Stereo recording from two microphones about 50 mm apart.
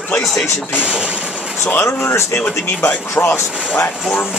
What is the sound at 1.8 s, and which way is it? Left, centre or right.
Speech, left.